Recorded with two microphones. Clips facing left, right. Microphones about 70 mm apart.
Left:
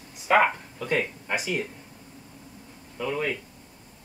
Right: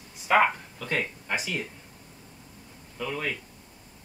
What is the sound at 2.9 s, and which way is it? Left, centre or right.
Speech, centre.